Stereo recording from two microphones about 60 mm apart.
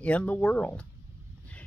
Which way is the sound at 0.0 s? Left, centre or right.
Left.